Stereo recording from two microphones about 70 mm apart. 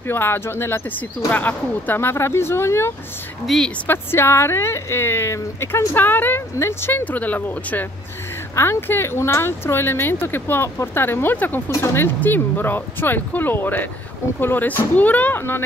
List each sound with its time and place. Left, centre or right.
0.1 s speech: left
1.3 s speech: left
3.4 s a woman's voice: centre
3.8 s speech: left
6.5 s speech: left
6.9 s speech: left
11.7 s speech: left